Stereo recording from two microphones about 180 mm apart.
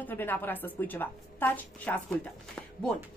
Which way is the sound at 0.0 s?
10° left (ahead or behind).